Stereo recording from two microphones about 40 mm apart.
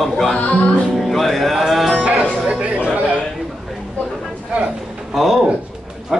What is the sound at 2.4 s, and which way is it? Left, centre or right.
Chatter, right.